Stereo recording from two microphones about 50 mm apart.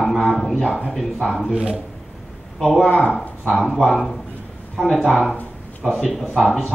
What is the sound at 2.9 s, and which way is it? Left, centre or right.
Speech, left.